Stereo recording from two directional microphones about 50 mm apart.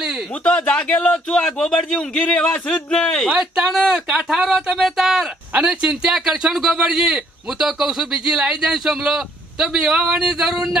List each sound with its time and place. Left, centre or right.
0.4 s speech: left
3.3 s speech: centre
4.3 s speech: centre
5.5 s speech: centre